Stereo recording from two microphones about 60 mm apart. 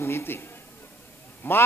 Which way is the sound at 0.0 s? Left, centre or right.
Left.